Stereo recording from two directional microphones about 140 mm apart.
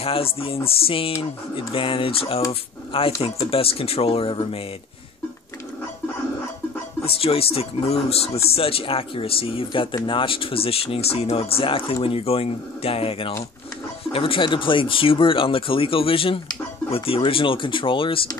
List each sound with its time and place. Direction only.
0.0 s speech: 40° left (ahead or behind)
7.1 s speech: 45° left (ahead or behind)